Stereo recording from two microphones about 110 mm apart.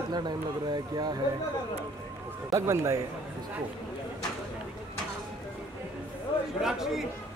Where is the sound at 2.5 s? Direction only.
25° right (ahead or behind).